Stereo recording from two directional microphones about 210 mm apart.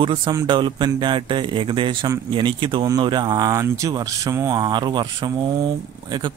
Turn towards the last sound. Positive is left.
turn(degrees=-20)  # may be behind; listen again after turning